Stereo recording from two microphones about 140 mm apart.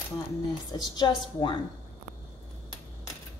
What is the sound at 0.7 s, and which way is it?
Speech, 30° left (ahead or behind).